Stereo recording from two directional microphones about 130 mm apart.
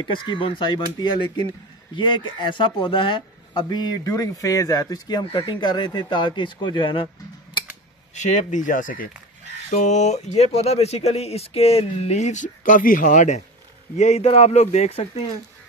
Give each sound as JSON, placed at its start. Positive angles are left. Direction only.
{"t": 0.0, "sound": "speech", "side_deg": 35}
{"t": 8.1, "sound": "speech", "side_deg": 65}
{"t": 9.7, "sound": "speech", "side_deg": 65}
{"t": 13.9, "sound": "speech", "side_deg": 60}